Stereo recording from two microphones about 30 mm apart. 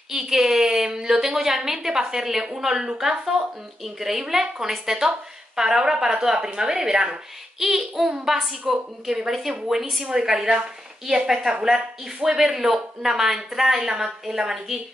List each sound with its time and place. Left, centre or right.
0.1 s a woman's voice: centre
7.5 s a woman's voice: centre
13.7 s a woman's voice: centre